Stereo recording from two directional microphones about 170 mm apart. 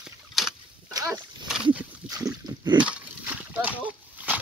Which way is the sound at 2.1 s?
20° right (ahead or behind).